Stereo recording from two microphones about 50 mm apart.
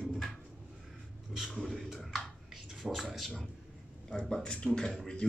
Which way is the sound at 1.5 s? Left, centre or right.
Centre.